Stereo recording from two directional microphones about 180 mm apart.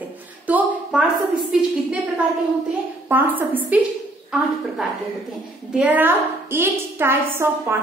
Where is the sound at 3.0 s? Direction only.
10° right (ahead or behind).